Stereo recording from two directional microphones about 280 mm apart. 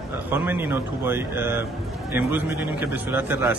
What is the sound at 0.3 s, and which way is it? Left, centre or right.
A man's voice, centre.